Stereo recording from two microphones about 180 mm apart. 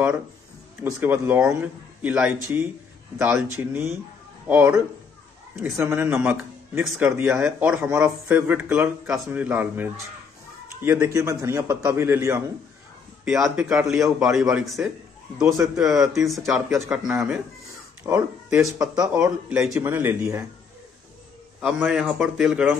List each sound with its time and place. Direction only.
0.8 s a man's voice: 15° right (ahead or behind)
18.0 s speech: 15° right (ahead or behind)
18.9 s a man's voice: 5° right (ahead or behind)
21.5 s a man's voice: 5° right (ahead or behind)